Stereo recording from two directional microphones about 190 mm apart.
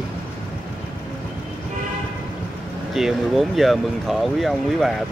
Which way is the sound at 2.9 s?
Centre (ahead or behind).